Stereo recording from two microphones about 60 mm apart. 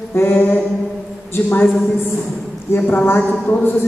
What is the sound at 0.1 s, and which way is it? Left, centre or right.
A woman's voice, left.